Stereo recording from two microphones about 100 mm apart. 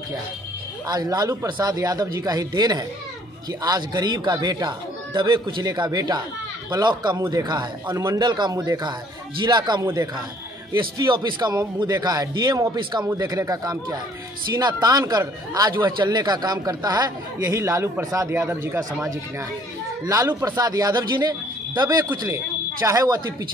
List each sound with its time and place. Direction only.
0.8 s speech: 40° right (ahead or behind)
7.8 s speech: 30° right (ahead or behind)
8.2 s speech: 45° right (ahead or behind)
9.8 s speech: 35° right (ahead or behind)
10.7 s speech: 50° right (ahead or behind); by 18.8 s 25° right (ahead or behind)
20.1 s speech: 30° right (ahead or behind)